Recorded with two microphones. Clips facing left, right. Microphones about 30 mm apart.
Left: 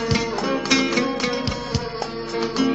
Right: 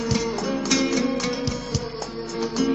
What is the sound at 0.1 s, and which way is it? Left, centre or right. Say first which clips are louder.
Music: left 3 dB; left.